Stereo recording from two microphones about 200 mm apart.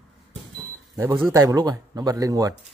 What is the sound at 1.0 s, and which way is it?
Speech, 10° right (ahead or behind).